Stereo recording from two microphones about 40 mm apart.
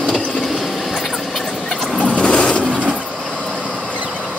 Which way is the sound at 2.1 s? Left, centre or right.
Left.